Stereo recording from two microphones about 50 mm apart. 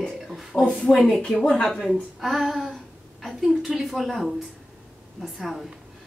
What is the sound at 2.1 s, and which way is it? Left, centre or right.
A woman's voice, centre.